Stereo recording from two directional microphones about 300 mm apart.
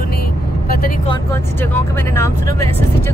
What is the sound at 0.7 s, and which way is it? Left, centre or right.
Vehicle, left.